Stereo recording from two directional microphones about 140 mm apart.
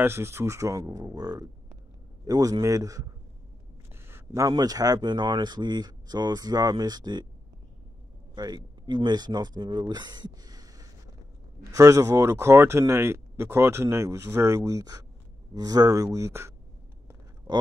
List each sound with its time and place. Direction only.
0.0 s speech: 15° right (ahead or behind)
8.4 s speech: 30° right (ahead or behind)